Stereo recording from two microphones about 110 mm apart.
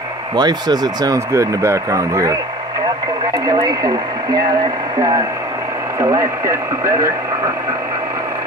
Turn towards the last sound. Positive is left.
turn(degrees=-30)  # may be behind; listen again after turning